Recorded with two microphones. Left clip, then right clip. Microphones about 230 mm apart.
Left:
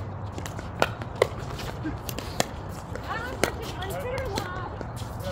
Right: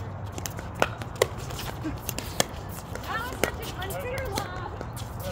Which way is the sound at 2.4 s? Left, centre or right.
Right.